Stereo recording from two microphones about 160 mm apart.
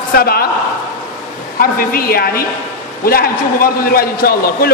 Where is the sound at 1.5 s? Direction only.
65° left (ahead or behind).